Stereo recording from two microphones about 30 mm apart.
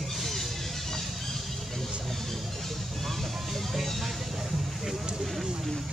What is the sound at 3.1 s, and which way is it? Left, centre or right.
Vehicle, centre.